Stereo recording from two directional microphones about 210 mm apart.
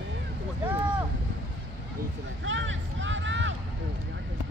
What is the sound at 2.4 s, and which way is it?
Vehicle, 60° right (ahead or behind).